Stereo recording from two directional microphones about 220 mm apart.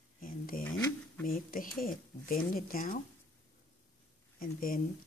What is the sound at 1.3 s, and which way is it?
Speech, 40° left (ahead or behind).